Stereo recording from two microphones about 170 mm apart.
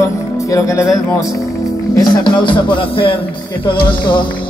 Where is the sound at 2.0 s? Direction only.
25° left (ahead or behind).